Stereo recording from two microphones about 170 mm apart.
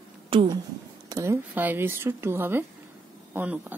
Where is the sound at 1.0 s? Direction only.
15° right (ahead or behind).